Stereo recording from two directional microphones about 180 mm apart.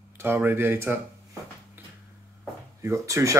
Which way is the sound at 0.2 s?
10° right (ahead or behind).